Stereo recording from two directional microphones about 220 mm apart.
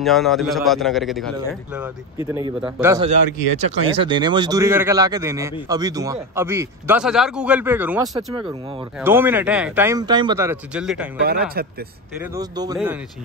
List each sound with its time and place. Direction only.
0.0 s a man's voice: centre (ahead or behind)
2.1 s speech: 15° right (ahead or behind)
11.2 s speech: 45° right (ahead or behind)
12.2 s speech: 15° right (ahead or behind)